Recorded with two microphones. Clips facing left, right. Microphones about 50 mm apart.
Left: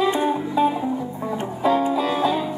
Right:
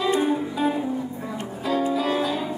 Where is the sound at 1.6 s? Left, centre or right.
Left.